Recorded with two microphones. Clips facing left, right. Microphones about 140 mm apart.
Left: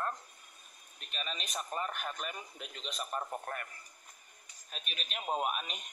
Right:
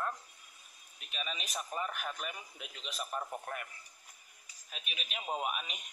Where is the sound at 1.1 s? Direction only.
5° right (ahead or behind).